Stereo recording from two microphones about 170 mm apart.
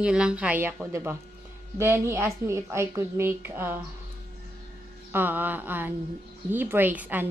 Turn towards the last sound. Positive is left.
turn(degrees=-10)  # may be behind; listen again after turning